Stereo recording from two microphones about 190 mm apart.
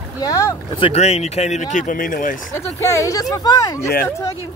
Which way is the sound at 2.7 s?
15° left (ahead or behind).